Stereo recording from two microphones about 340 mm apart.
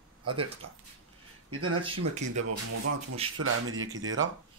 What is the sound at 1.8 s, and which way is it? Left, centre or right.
Speech, centre.